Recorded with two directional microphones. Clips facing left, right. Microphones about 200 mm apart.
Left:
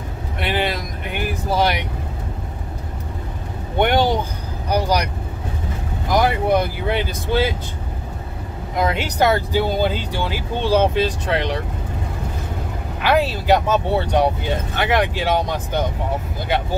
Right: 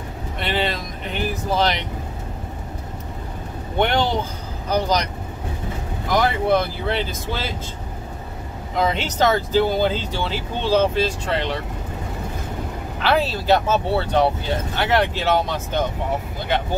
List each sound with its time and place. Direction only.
0.4 s speech: 10° left (ahead or behind)
3.8 s vehicle: 15° left (ahead or behind)
6.2 s speech: 15° left (ahead or behind)
8.7 s speech: 10° left (ahead or behind)
13.0 s speech: 15° left (ahead or behind)